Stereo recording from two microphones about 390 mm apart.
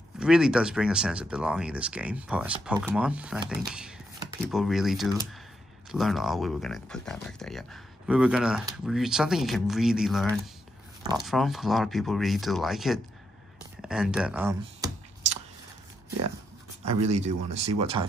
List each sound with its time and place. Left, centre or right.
0.2 s speech: centre
13.7 s computer keyboard: centre
16.8 s speech: centre